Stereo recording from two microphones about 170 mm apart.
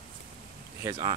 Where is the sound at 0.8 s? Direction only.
25° right (ahead or behind).